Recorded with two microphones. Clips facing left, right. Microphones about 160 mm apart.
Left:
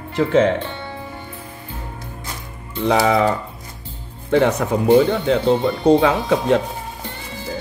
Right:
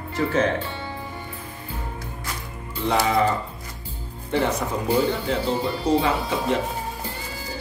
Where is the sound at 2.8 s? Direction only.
70° left (ahead or behind).